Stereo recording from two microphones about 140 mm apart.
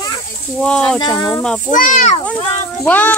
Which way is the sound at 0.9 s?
30° left (ahead or behind).